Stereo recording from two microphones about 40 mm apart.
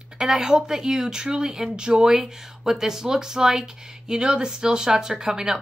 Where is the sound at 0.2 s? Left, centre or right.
Centre.